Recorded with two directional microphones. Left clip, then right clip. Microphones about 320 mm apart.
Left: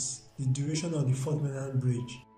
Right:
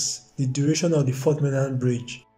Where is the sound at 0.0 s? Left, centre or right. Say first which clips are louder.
Right 9 dB; right.